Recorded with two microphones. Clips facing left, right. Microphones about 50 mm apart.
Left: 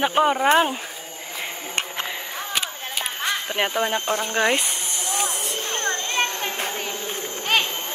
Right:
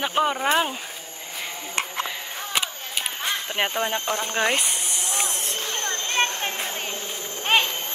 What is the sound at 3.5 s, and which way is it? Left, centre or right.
Speech, centre.